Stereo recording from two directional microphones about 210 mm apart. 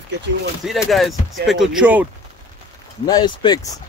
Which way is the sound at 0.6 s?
Centre (ahead or behind).